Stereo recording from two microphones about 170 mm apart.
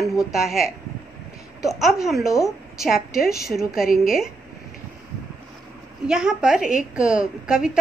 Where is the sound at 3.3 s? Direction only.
20° left (ahead or behind).